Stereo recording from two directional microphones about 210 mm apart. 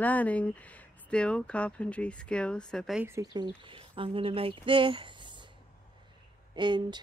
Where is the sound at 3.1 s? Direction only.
20° right (ahead or behind).